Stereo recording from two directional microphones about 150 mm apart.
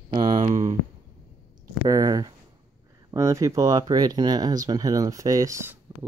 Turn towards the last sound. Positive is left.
turn(degrees=-20)  # may be behind; listen again after turning